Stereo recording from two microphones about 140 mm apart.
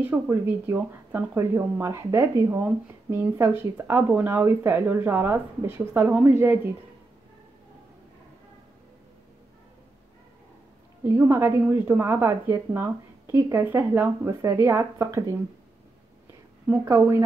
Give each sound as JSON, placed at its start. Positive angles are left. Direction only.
{"t": 0.0, "sound": "speech", "side_deg": -15}
{"t": 11.1, "sound": "speech", "side_deg": -15}
{"t": 16.6, "sound": "speech", "side_deg": -15}